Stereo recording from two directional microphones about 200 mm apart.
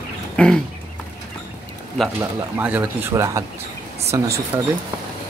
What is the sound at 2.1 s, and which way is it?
Speech, 10° right (ahead or behind).